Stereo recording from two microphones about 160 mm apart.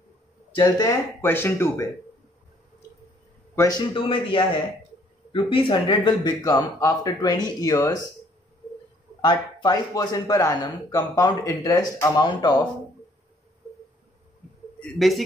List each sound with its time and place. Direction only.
0.6 s speech: 25° left (ahead or behind)
1.2 s speech: 15° left (ahead or behind)
3.5 s a man's voice: 25° left (ahead or behind)
9.2 s speech: 25° left (ahead or behind)
14.8 s a man's voice: centre (ahead or behind)